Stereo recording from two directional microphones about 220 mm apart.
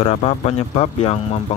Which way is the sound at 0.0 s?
25° left (ahead or behind).